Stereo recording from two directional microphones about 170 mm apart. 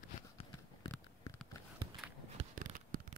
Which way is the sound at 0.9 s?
15° left (ahead or behind).